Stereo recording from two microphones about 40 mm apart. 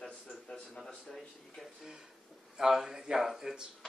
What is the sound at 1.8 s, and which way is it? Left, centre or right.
Speech, centre.